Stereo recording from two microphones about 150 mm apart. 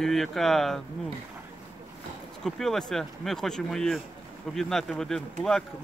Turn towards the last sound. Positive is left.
turn(degrees=5)  # may be behind; listen again after turning